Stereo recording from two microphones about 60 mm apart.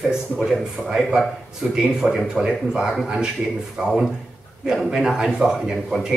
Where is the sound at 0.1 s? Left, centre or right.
Centre.